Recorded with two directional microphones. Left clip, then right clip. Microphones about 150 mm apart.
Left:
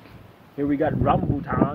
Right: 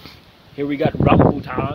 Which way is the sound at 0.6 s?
35° right (ahead or behind).